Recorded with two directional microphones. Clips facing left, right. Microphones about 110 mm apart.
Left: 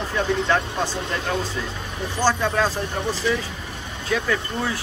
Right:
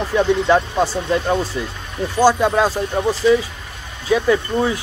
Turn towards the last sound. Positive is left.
turn(degrees=-15)  # may be behind; listen again after turning